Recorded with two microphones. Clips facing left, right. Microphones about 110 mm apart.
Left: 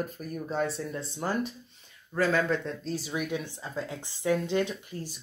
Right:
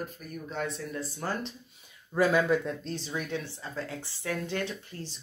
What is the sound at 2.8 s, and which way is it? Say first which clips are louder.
A woman's voice: left 3 dB; 10° left (ahead or behind).